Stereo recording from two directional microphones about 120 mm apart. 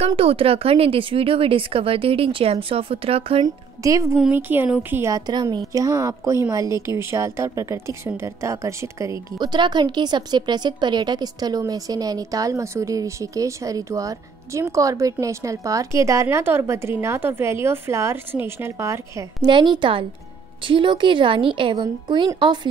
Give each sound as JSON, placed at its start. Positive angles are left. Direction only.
{"t": 0.0, "sound": "a woman's voice", "side_deg": -55}
{"t": 3.4, "sound": "a woman's voice", "side_deg": -25}
{"t": 4.2, "sound": "speech", "side_deg": -15}
{"t": 5.1, "sound": "a woman's voice", "side_deg": -35}
{"t": 19.4, "sound": "a woman's voice", "side_deg": -40}